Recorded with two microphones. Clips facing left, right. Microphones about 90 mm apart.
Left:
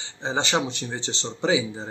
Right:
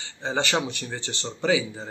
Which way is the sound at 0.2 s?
20° left (ahead or behind).